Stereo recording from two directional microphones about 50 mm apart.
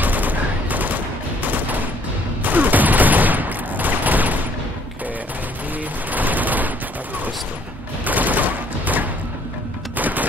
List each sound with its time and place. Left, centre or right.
0.0 s fusillade: right
6.0 s fusillade: right
8.0 s fusillade: right
9.9 s music: right